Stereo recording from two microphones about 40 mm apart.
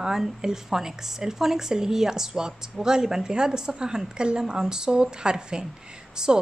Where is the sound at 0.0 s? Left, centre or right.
Centre.